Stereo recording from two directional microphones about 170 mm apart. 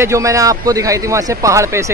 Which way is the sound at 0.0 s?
20° right (ahead or behind).